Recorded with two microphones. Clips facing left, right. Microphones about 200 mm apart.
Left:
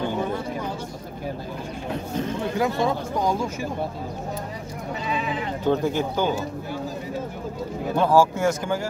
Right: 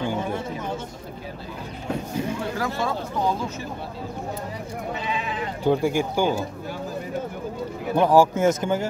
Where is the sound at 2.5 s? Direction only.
20° left (ahead or behind).